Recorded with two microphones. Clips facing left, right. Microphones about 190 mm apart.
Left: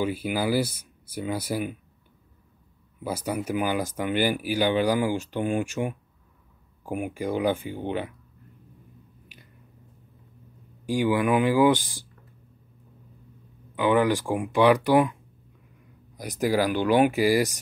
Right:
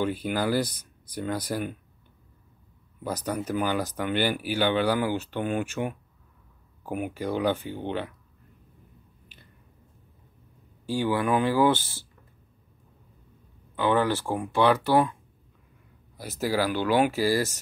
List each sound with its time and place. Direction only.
0.0 s speech: 5° left (ahead or behind)
3.0 s speech: 10° left (ahead or behind)
10.9 s speech: 15° left (ahead or behind)
13.7 s speech: 15° left (ahead or behind)
16.2 s speech: 15° left (ahead or behind)